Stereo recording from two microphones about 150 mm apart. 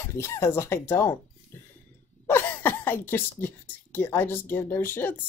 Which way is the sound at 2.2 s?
15° left (ahead or behind).